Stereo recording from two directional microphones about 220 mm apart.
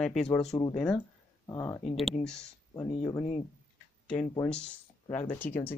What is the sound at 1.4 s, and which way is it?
Speech, 15° left (ahead or behind).